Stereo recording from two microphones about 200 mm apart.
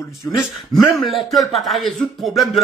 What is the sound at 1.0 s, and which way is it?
Speech, centre (ahead or behind).